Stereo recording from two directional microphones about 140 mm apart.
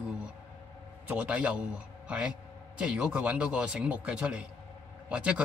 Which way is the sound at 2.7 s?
10° right (ahead or behind).